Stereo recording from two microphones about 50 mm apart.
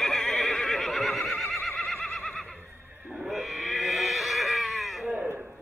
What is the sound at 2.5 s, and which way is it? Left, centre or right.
Neigh, right.